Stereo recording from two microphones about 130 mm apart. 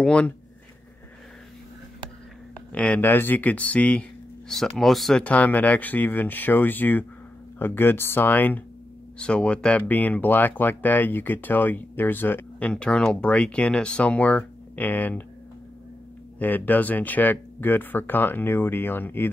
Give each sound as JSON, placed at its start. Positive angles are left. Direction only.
{"t": 0.0, "sound": "speech", "side_deg": 10}
{"t": 2.7, "sound": "speech", "side_deg": 10}
{"t": 16.3, "sound": "speech", "side_deg": 15}